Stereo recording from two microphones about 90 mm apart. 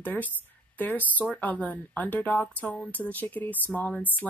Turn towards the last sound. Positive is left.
turn(degrees=20)  # may be behind; listen again after turning